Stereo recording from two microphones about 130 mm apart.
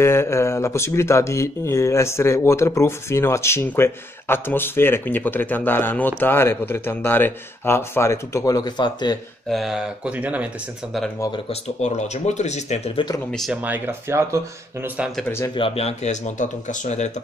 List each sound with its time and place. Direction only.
0.0 s speech: 20° left (ahead or behind)
9.5 s speech: centre (ahead or behind)
11.8 s speech: 60° left (ahead or behind)
13.3 s speech: centre (ahead or behind)
13.6 s speech: 15° right (ahead or behind)
15.2 s speech: 20° left (ahead or behind)
15.5 s speech: 45° left (ahead or behind); by 17.1 s 65° left (ahead or behind)